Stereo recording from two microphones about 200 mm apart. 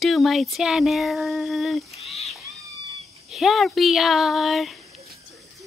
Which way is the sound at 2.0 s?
35° left (ahead or behind).